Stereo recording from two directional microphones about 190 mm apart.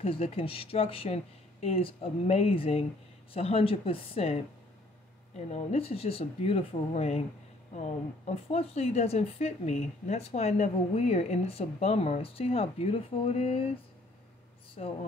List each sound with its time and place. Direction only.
0.0 s a woman's voice: 30° left (ahead or behind)
5.5 s a woman's voice: 35° left (ahead or behind)
14.8 s a woman's voice: 35° left (ahead or behind)